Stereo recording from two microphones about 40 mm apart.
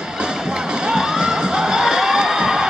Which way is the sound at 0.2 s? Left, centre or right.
Centre.